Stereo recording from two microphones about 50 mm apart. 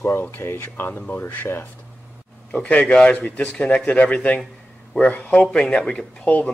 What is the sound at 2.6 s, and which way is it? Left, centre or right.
A man's voice, left.